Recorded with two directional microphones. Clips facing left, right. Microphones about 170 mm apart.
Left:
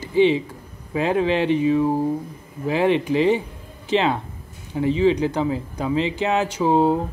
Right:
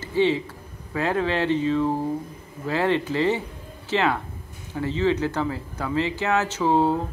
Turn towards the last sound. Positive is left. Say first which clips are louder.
# left 3 dB
turn(degrees=15)  # may be behind; listen again after turning